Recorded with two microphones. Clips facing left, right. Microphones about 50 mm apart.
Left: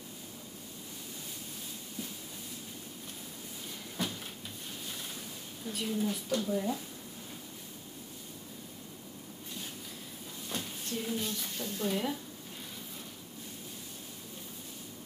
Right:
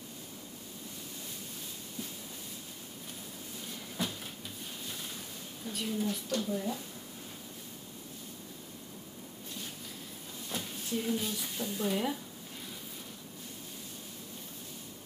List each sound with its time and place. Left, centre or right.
3.9 s cupboard open or close: centre
5.6 s a woman's voice: centre
10.5 s a woman's voice: centre